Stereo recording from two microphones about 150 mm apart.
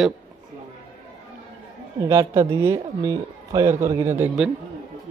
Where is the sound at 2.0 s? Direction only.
20° right (ahead or behind).